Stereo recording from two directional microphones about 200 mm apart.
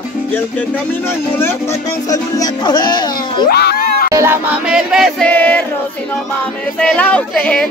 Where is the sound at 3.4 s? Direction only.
50° left (ahead or behind).